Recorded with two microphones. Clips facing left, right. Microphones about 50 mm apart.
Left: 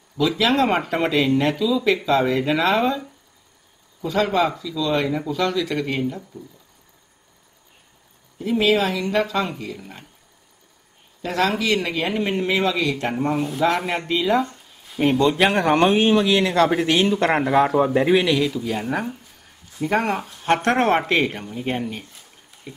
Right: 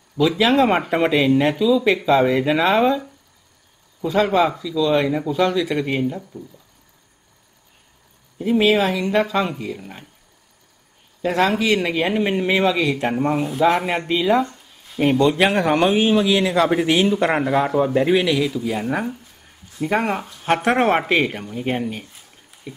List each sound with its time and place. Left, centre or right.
0.4 s speech: centre
8.4 s speech: right
11.2 s a man's voice: centre